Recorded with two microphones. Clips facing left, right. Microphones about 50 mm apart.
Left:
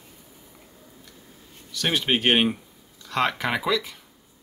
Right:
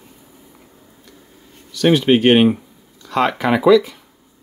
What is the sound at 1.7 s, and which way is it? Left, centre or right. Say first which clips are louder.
Speech: right 11 dB; centre.